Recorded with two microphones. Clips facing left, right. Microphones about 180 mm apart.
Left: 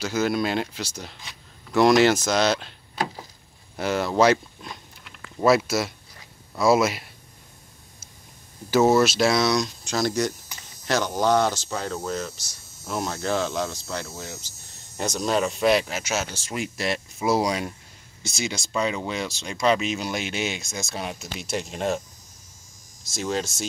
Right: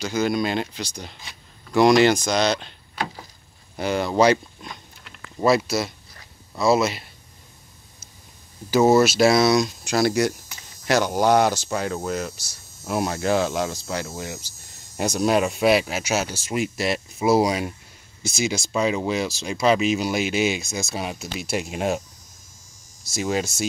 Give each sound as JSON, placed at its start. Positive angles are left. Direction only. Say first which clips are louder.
{"t": 0.0, "sound": "speech", "louder": "right 1 dB", "side_deg": 5}
{"t": 3.7, "sound": "a sound", "louder": "right 1 dB", "side_deg": 0}
{"t": 8.6, "sound": "speech", "louder": "right 2 dB", "side_deg": 0}
{"t": 23.0, "sound": "speech", "louder": "right 3 dB", "side_deg": -10}